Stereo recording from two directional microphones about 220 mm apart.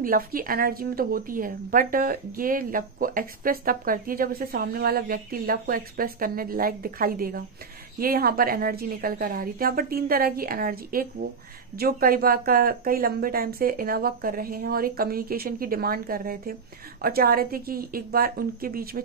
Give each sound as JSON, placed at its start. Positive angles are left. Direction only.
{"t": 0.0, "sound": "a woman's voice", "side_deg": -40}